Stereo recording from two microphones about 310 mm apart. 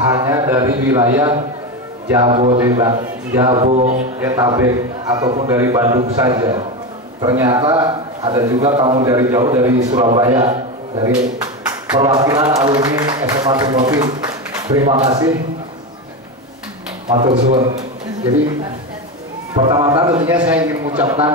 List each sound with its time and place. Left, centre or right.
0.1 s a man's voice: centre
4.2 s a man's voice: centre
5.9 s a man's voice: right
17.1 s a man's voice: centre
19.7 s a man's voice: centre
20.2 s a man's voice: centre
21.0 s a man's voice: centre